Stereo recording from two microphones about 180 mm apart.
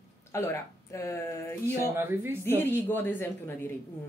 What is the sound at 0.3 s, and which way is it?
A woman's voice, 15° left (ahead or behind).